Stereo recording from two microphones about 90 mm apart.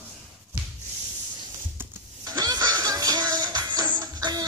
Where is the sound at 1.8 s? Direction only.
25° right (ahead or behind).